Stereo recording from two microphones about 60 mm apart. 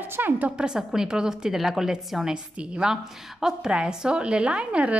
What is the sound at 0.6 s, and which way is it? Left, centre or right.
A woman's voice, centre.